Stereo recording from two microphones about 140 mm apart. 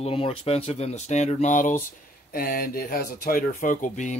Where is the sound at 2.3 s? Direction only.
90° left; by 4.2 s 60° left (ahead or behind).